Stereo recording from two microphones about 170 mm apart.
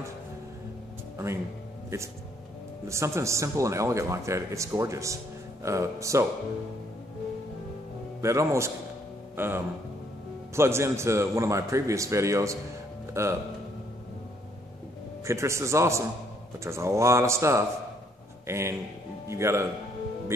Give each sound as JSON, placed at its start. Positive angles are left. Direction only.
{"t": 1.1, "sound": "music", "side_deg": -15}
{"t": 2.9, "sound": "a man's voice", "side_deg": -15}
{"t": 8.2, "sound": "a man's voice", "side_deg": -15}
{"t": 15.2, "sound": "a man's voice", "side_deg": -15}